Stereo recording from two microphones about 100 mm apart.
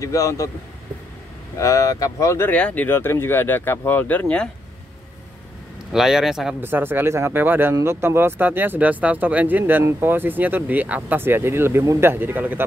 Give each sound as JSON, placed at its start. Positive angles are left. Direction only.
{"t": 0.0, "sound": "speech", "side_deg": 30}
{"t": 1.6, "sound": "speech", "side_deg": 35}
{"t": 2.5, "sound": "speech", "side_deg": 15}
{"t": 5.9, "sound": "a man's voice", "side_deg": -5}
{"t": 6.6, "sound": "speech", "side_deg": -20}
{"t": 12.1, "sound": "speech", "side_deg": -20}